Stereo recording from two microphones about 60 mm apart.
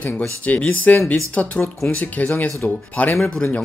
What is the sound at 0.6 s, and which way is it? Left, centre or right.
Speech, left.